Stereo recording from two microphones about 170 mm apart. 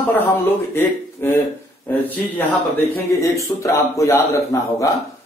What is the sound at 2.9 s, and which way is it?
A man's voice, 20° left (ahead or behind).